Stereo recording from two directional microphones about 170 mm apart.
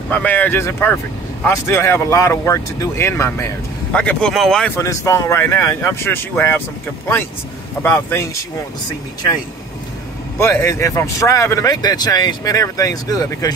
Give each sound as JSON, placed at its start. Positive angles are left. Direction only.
{"t": 0.1, "sound": "speech", "side_deg": 10}
{"t": 4.7, "sound": "speech", "side_deg": 15}
{"t": 7.8, "sound": "speech", "side_deg": 15}
{"t": 10.4, "sound": "speech", "side_deg": 15}